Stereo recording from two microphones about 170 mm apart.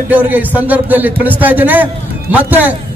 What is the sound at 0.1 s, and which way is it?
A man's voice, 10° right (ahead or behind).